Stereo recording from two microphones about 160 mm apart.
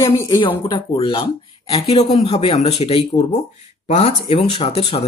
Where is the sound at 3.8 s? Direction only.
40° left (ahead or behind).